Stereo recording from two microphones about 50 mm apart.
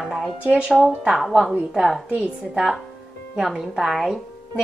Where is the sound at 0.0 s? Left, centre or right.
Centre.